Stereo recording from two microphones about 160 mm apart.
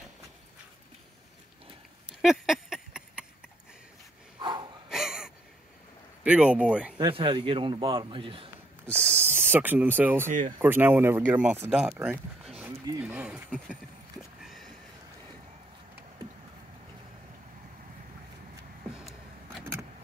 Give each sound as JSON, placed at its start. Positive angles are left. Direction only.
{"t": 2.0, "sound": "a sound", "side_deg": -5}
{"t": 4.4, "sound": "breathing", "side_deg": -30}
{"t": 4.8, "sound": "gasp", "side_deg": -5}
{"t": 6.2, "sound": "speech", "side_deg": -5}
{"t": 7.0, "sound": "a man's voice", "side_deg": -30}
{"t": 8.8, "sound": "owl", "side_deg": 10}
{"t": 9.2, "sound": "speech", "side_deg": -15}
{"t": 14.4, "sound": "a sound", "side_deg": 0}